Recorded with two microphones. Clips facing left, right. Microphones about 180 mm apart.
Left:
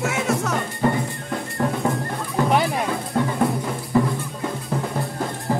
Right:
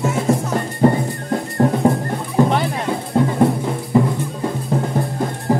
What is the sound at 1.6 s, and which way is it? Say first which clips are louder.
Music: right 7 dB; 35° right (ahead or behind).